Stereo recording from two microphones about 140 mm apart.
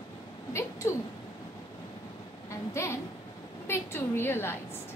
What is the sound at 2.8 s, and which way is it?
A woman's voice, 20° left (ahead or behind).